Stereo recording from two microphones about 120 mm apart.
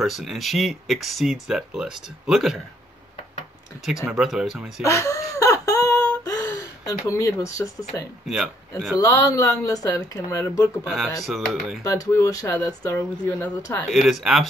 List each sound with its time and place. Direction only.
0.0 s speech: centre (ahead or behind)
3.8 s speech: 10° right (ahead or behind)
4.8 s a sound: 25° left (ahead or behind)
8.3 s speech: 5° right (ahead or behind)
8.9 s speech: 30° left (ahead or behind)
10.8 s speech: centre (ahead or behind)
11.8 s speech: 25° left (ahead or behind)
14.2 s speech: centre (ahead or behind)